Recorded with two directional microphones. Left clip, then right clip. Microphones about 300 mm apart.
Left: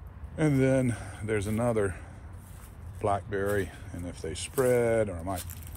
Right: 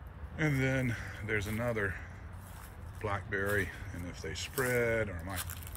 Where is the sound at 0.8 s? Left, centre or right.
Centre.